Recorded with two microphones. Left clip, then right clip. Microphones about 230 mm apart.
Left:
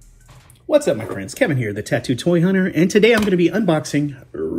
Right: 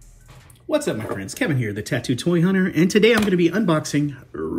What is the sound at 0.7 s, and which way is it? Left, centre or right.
Speech, centre.